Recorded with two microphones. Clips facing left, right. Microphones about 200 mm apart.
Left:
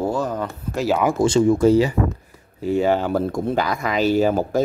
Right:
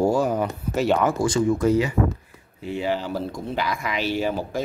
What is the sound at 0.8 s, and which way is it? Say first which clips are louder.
Speech: left 1 dB; 5° left (ahead or behind).